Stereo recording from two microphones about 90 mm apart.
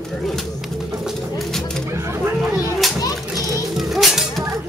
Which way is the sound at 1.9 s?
30° right (ahead or behind).